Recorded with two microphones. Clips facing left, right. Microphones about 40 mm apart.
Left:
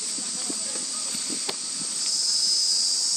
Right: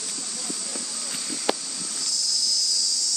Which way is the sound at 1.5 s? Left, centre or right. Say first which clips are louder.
Right 12 dB; right.